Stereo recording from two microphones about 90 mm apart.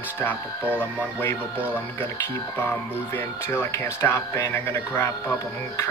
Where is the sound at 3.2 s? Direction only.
25° left (ahead or behind).